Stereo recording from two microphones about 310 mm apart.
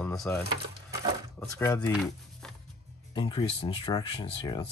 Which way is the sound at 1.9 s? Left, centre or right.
Centre.